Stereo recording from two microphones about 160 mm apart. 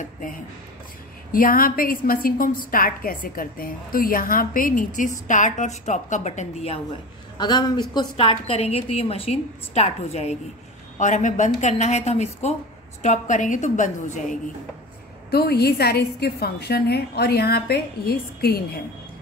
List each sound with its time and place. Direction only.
1.3 s a woman's voice: 60° left (ahead or behind); by 6.8 s 40° left (ahead or behind)
7.3 s a woman's voice: 30° left (ahead or behind); by 14.4 s 50° left (ahead or behind)
15.3 s a woman's voice: 85° left